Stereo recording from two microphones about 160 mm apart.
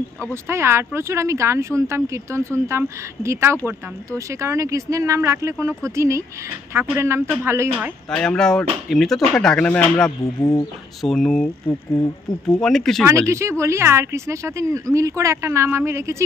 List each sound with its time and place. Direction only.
0.3 s speech: 15° right (ahead or behind)
8.1 s speech: 5° left (ahead or behind)
10.2 s speech: 25° left (ahead or behind)
11.0 s speech: 5° left (ahead or behind)
13.3 s speech: 15° right (ahead or behind)